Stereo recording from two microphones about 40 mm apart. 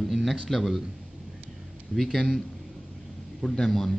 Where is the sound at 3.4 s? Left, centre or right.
Centre.